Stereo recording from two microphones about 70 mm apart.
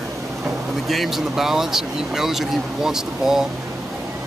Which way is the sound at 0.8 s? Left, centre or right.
Centre.